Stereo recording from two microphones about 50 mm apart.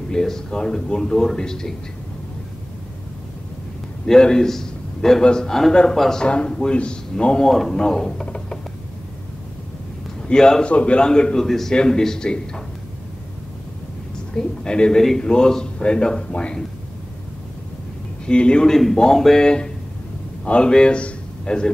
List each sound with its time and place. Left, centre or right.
0.1 s a man's voice: centre
4.0 s a man's voice: centre
6.2 s speech: centre
7.4 s a man's voice: centre
10.2 s a man's voice: centre
10.7 s speech: left
11.0 s a man's voice: centre
14.3 s a man's voice: centre
18.2 s a man's voice: centre